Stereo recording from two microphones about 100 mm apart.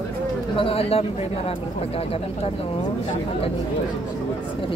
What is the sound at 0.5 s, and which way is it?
Speech, 70° left (ahead or behind).